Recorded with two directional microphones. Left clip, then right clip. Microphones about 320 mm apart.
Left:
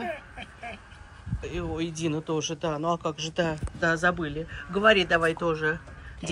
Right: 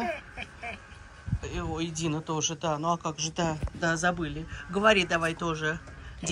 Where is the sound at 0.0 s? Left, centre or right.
Centre.